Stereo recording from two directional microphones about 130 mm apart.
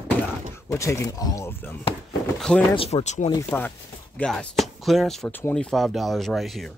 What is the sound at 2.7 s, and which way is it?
Speech, 50° left (ahead or behind).